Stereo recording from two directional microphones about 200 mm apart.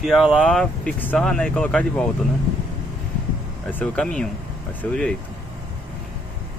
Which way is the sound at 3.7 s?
5° left (ahead or behind).